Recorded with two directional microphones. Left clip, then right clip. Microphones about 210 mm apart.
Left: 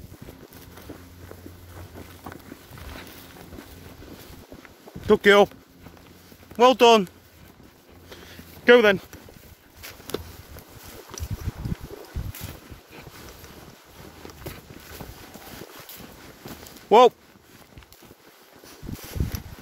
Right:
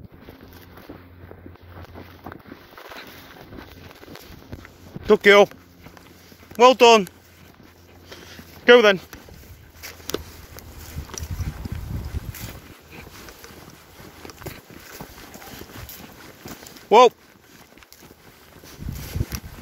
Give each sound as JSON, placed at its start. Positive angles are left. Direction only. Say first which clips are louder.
{"t": 2.3, "sound": "boat", "louder": "right 2 dB", "side_deg": -35}
{"t": 5.0, "sound": "speech", "louder": "right 3 dB", "side_deg": 15}
{"t": 6.5, "sound": "speech", "louder": "right 3 dB", "side_deg": 15}
{"t": 8.6, "sound": "speech", "louder": "right 3 dB", "side_deg": 20}
{"t": 9.8, "sound": "a sound", "louder": "right 3 dB", "side_deg": -45}
{"t": 16.9, "sound": "speech", "louder": "right 2 dB", "side_deg": 25}